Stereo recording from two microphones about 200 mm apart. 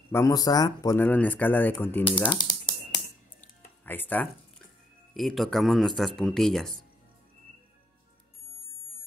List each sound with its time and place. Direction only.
0.1 s speech: 15° left (ahead or behind)
2.0 s a sound: 25° left (ahead or behind)
3.3 s music: 10° left (ahead or behind)
5.1 s speech: centre (ahead or behind)